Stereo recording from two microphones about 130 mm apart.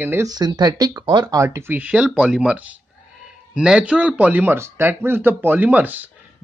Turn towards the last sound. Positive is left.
turn(degrees=-15)  # may be behind; listen again after turning